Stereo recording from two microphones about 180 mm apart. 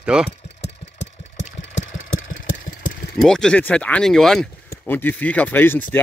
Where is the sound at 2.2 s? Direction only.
50° left (ahead or behind).